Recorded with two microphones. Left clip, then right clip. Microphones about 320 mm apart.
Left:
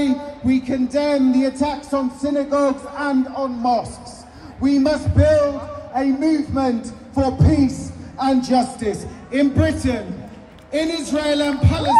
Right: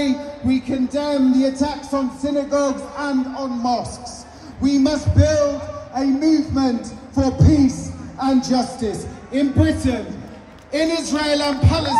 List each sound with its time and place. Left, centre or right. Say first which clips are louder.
0.5 s speech: left 1 dB; centre
1.0 s a man's voice: right 1 dB; left
9.3 s speech: left 1 dB; centre
10.7 s a man's voice: right 1 dB; centre